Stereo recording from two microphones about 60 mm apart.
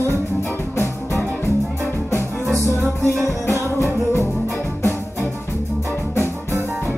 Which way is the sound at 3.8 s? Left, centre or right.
Left.